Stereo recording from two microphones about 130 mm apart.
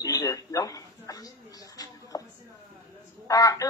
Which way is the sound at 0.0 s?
25° left (ahead or behind).